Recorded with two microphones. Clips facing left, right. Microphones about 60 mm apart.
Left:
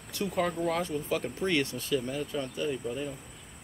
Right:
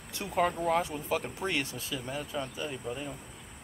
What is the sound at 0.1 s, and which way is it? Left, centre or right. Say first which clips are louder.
Speech: right 1 dB; right.